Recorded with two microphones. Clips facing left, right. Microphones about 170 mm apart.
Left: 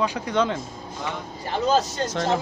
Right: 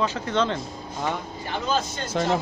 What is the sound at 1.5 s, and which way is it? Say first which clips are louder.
Speech: left 5 dB; 35° left (ahead or behind).